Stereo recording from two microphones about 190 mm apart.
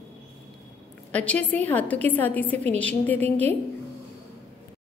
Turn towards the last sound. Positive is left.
turn(degrees=10)  # may be behind; listen again after turning